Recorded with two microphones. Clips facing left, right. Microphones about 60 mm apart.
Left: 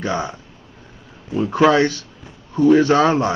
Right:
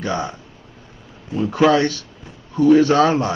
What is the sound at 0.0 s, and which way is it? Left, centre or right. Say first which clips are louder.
Speech: left 1 dB; left.